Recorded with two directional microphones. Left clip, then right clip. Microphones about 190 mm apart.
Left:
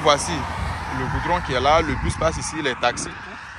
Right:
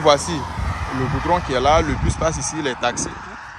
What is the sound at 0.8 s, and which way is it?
Speech, 15° right (ahead or behind).